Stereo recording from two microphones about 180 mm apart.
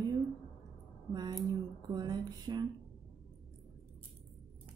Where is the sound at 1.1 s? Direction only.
20° right (ahead or behind).